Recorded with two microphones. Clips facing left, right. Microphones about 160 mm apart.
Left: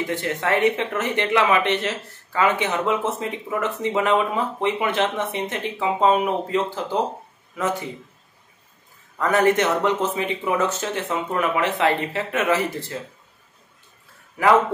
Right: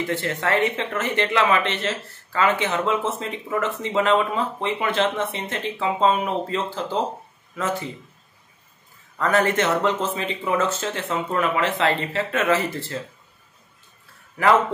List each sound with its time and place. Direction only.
0.1 s speech: 15° left (ahead or behind)
9.2 s speech: 15° left (ahead or behind)